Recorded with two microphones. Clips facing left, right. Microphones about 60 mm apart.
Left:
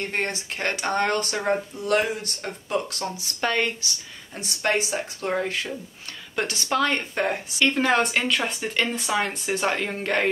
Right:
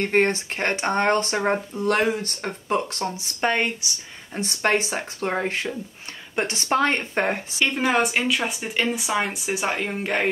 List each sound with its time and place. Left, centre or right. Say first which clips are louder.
0.0 s speech: right 7 dB; right
1.9 s speech: right 2 dB; right
4.4 s speech: right 2 dB; right
7.6 s speech: even; centre